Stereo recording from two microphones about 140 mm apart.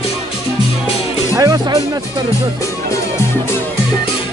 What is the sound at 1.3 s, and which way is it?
Speech, 25° right (ahead or behind).